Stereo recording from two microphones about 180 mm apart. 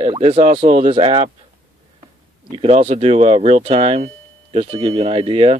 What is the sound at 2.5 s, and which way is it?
Speech, 35° right (ahead or behind).